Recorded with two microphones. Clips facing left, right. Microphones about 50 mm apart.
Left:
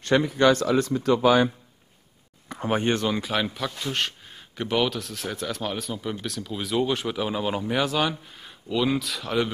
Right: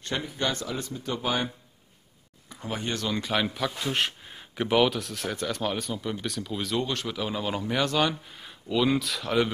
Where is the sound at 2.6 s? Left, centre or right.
Left.